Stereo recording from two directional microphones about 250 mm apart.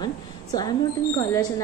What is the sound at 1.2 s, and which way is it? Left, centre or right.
Speech, centre.